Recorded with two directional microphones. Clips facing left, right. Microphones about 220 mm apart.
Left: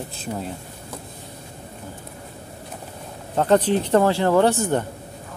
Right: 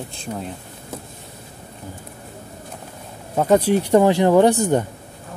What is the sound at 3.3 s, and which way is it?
Speech, 10° right (ahead or behind).